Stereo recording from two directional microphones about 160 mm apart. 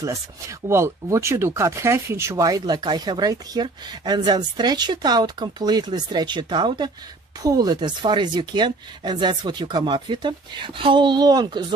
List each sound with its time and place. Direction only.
0.0 s speech: 20° right (ahead or behind)